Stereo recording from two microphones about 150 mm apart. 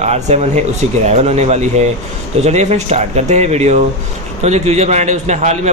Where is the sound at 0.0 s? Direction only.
45° right (ahead or behind).